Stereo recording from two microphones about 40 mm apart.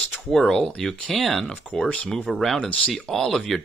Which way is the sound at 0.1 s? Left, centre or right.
Centre.